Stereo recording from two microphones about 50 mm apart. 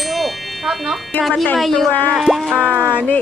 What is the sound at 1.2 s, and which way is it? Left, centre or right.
Speech, centre.